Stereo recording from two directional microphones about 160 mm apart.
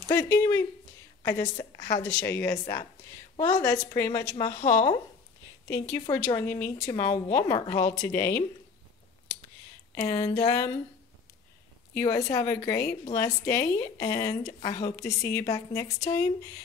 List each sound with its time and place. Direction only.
0.1 s speech: 15° left (ahead or behind)
1.4 s a woman's voice: 25° left (ahead or behind)
2.0 s a woman's voice: 10° left (ahead or behind)
4.6 s a woman's voice: 30° left (ahead or behind)
10.3 s a woman's voice: 20° left (ahead or behind)
12.0 s a woman's voice: 20° left (ahead or behind)
14.7 s a woman's voice: 40° left (ahead or behind)
15.0 s a woman's voice: 20° left (ahead or behind)